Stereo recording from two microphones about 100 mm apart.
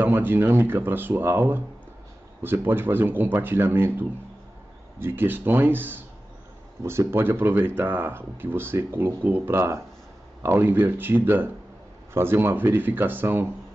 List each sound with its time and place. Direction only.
0.0 s speech: 20° right (ahead or behind)
4.9 s speech: 20° right (ahead or behind)